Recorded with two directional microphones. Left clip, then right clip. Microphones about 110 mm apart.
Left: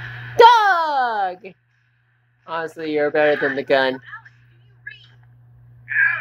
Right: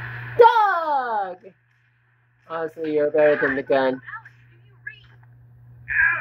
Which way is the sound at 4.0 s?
5° left (ahead or behind).